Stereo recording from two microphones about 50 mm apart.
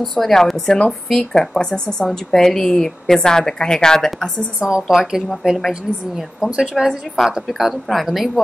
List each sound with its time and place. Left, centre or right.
0.0 s a woman's voice: centre
4.6 s a woman's voice: centre
4.8 s a woman's voice: centre
6.8 s speech: centre